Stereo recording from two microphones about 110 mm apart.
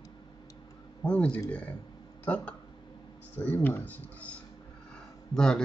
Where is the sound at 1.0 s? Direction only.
10° left (ahead or behind).